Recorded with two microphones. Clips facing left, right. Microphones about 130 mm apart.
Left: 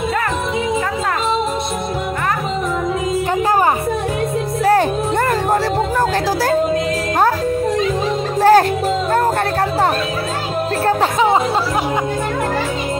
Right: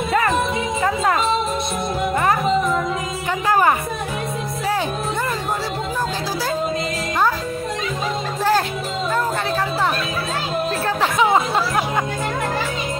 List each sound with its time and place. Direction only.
8.4 s music: 60° left (ahead or behind)
10.9 s music: 40° left (ahead or behind)